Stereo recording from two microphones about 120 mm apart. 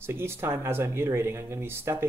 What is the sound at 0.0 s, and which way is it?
Speech, 20° right (ahead or behind).